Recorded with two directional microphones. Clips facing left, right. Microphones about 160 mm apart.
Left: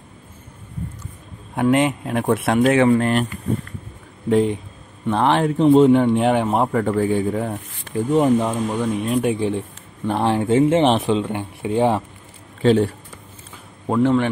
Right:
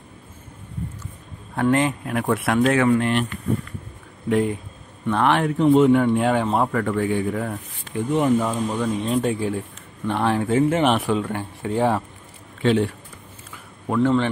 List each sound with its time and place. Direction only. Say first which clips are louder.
1.5 s speech: left 2 dB; 15° left (ahead or behind)
2.9 s speech: left 2 dB; 40° left (ahead or behind)
4.3 s speech: left 3 dB; 25° left (ahead or behind)
8.5 s speech: left 2 dB; 10° left (ahead or behind)
10.0 s speech: left 2 dB; 30° left (ahead or behind)
12.6 s speech: left 4 dB; 35° left (ahead or behind)
13.8 s a man's voice: left 2 dB; 20° left (ahead or behind)